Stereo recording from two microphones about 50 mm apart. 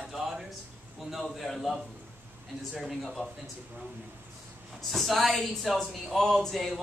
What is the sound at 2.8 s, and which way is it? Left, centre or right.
Speech, centre.